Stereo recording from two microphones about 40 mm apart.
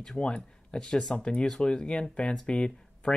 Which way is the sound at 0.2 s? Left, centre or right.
Left.